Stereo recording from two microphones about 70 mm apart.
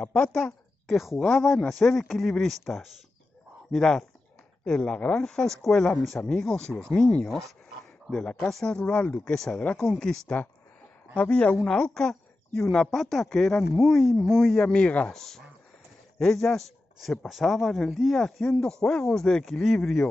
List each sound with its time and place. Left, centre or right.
0.0 s a woman's voice: centre